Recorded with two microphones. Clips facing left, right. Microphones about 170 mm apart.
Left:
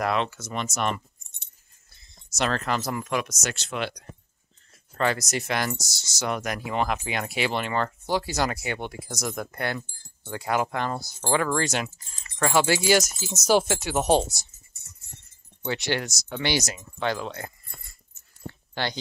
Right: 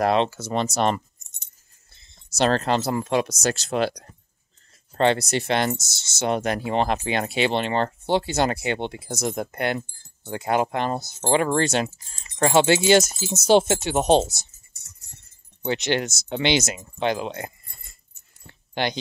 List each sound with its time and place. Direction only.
0.0 s speech: 30° right (ahead or behind)
15.6 s speech: 20° right (ahead or behind)
18.5 s dog: 20° right (ahead or behind)